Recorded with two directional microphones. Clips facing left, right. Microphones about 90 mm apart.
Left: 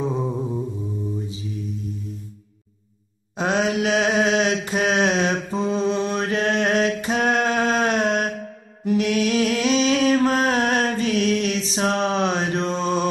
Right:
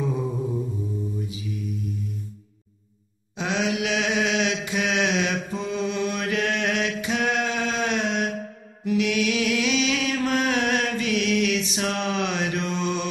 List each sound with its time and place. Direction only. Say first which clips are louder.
0.0 s humming: left 2 dB; 30° left (ahead or behind)
1.1 s mantra: left 2 dB; 30° left (ahead or behind)
3.3 s mantra: left 4 dB; 45° left (ahead or behind)
8.8 s music: left 3 dB; 40° left (ahead or behind)